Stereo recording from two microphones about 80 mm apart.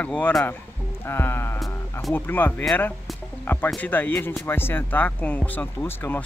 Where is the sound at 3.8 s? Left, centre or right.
Centre.